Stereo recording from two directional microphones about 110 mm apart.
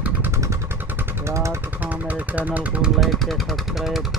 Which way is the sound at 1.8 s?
15° right (ahead or behind).